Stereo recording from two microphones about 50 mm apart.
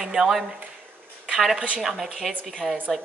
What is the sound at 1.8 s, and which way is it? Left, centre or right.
Speech, centre.